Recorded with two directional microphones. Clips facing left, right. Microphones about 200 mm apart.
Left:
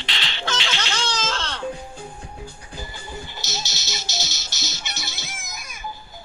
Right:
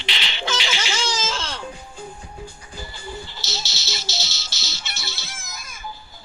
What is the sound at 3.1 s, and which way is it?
Music, 15° left (ahead or behind).